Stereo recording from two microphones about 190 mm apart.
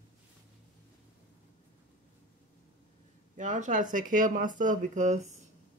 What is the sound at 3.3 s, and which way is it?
Speech, 40° right (ahead or behind).